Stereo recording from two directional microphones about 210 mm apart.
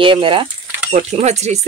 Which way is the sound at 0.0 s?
25° right (ahead or behind).